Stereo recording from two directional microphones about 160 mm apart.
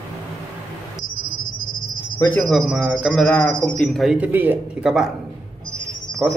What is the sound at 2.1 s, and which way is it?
Speech, 15° left (ahead or behind).